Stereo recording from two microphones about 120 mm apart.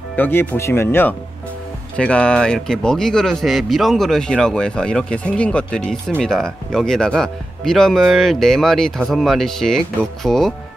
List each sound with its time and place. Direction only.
0.1 s speech: 15° left (ahead or behind)
2.0 s speech: 10° left (ahead or behind)